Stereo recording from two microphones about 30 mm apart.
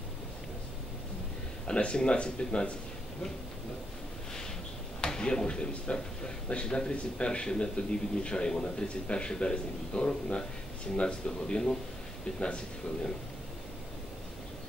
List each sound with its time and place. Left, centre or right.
1.8 s a man's voice: left
5.0 s a sound: left
5.9 s a man's voice: left